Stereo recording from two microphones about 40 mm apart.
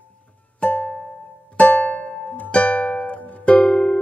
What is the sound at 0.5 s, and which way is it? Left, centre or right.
Music, left.